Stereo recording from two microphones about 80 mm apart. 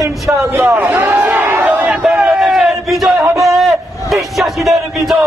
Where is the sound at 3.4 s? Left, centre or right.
Centre.